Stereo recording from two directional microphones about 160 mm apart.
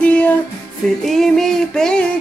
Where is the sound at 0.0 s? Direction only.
10° left (ahead or behind).